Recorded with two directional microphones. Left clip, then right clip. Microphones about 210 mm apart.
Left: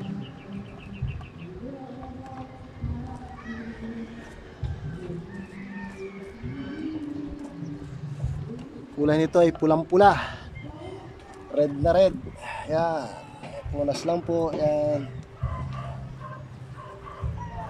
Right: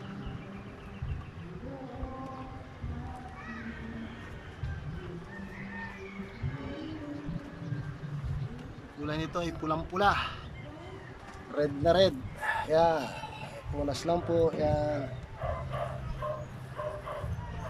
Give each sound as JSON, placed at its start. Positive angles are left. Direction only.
{"t": 9.0, "sound": "a man's voice", "side_deg": 40}
{"t": 11.5, "sound": "speech", "side_deg": 10}